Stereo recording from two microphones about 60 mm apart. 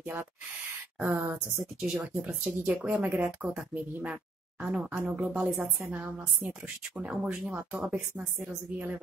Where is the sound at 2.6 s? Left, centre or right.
Centre.